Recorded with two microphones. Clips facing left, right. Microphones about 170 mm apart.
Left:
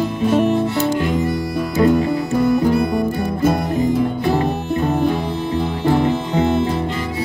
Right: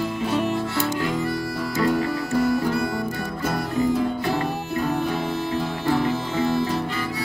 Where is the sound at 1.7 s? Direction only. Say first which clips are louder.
Left 7 dB; 20° left (ahead or behind).